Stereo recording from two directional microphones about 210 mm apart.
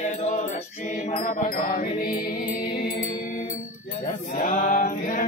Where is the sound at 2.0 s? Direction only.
45° left (ahead or behind).